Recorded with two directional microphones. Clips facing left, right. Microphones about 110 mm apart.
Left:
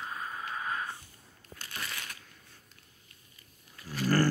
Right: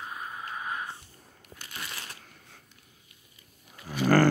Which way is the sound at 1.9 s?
25° right (ahead or behind).